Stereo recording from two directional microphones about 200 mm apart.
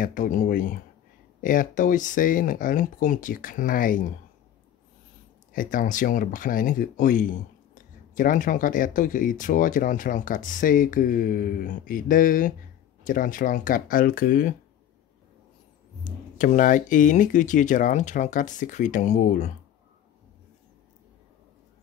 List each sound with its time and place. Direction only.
0.0 s speech: 40° left (ahead or behind)
5.5 s speech: 45° left (ahead or behind)
16.0 s speech: 40° left (ahead or behind)